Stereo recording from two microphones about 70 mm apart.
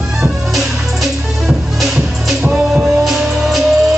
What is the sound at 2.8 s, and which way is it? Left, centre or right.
Music, centre.